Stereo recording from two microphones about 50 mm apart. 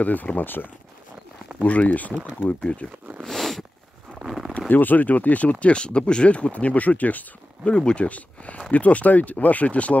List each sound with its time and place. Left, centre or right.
0.0 s speech: left
1.6 s speech: left
3.2 s a sound: centre
4.6 s speech: left
7.7 s speech: left